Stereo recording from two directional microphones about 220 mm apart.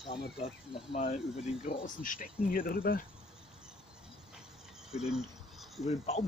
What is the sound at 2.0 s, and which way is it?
Speech, 40° left (ahead or behind).